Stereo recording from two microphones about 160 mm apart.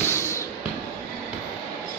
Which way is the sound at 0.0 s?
15° left (ahead or behind).